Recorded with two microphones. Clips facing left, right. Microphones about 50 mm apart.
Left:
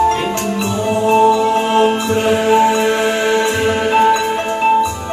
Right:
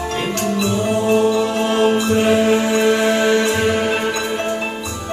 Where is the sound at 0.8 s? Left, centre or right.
Left.